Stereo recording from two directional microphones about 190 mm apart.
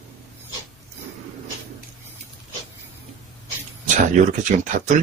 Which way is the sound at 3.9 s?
40° right (ahead or behind).